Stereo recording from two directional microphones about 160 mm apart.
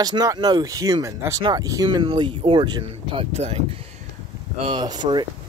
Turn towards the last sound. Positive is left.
turn(degrees=-25)  # may be behind; listen again after turning